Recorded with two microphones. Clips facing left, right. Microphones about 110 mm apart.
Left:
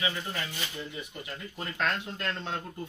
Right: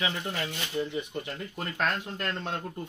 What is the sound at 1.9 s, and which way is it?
Speech, 45° right (ahead or behind).